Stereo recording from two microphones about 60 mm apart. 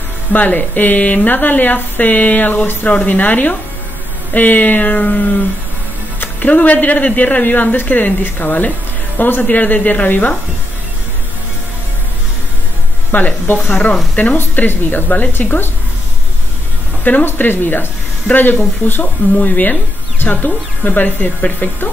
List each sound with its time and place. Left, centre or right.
0.3 s speech: left
6.1 s speech: left
13.1 s speech: left
17.0 s speech: left